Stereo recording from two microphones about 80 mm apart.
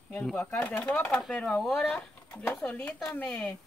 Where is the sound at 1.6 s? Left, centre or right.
Centre.